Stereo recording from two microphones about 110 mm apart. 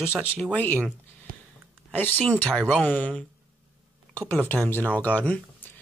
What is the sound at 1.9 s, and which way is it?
Speech, 20° left (ahead or behind).